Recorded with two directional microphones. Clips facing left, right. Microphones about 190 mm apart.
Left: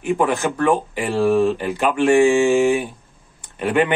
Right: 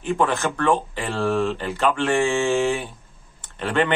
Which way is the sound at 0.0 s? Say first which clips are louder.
Left 3 dB; 15° left (ahead or behind).